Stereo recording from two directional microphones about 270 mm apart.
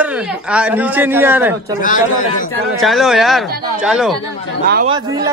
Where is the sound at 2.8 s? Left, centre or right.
Centre.